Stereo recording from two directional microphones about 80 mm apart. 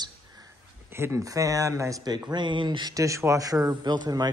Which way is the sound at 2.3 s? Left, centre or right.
Right.